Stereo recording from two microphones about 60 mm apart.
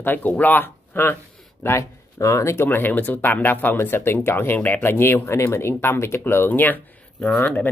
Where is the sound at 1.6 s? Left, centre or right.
Left.